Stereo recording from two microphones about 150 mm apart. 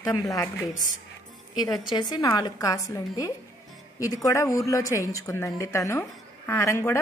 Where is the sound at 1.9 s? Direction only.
30° left (ahead or behind).